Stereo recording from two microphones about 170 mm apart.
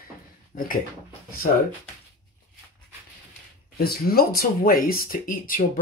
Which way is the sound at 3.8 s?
65° left (ahead or behind).